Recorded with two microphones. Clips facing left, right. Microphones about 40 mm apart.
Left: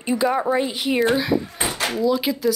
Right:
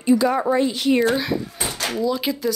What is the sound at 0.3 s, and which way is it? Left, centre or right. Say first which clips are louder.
A woman's voice: right 1 dB; centre.